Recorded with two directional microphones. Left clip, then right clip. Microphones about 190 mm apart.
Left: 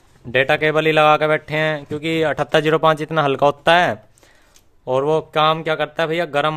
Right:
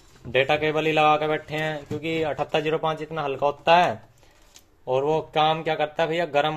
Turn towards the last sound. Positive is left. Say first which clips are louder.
# left 4 dB
turn(degrees=30)  # may be behind; listen again after turning